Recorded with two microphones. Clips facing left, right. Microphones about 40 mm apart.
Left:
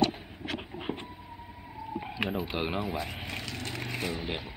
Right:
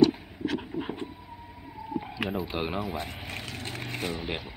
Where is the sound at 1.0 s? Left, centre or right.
Centre.